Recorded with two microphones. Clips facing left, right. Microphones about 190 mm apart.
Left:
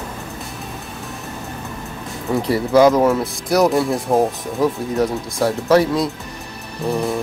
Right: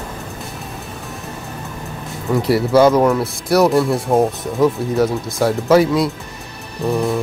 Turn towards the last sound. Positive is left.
turn(degrees=0)  # may be behind; listen again after turning